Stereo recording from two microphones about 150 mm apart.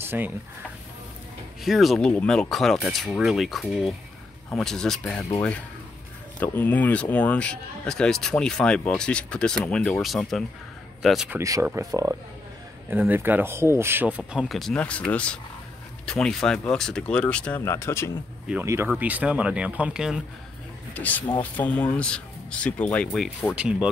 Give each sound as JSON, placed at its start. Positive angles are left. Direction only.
{"t": 0.0, "sound": "speech", "side_deg": -15}
{"t": 1.6, "sound": "speech", "side_deg": 0}
{"t": 6.4, "sound": "speech", "side_deg": 10}
{"t": 11.3, "sound": "speech", "side_deg": -20}
{"t": 18.5, "sound": "speech", "side_deg": -15}
{"t": 20.9, "sound": "speech", "side_deg": 10}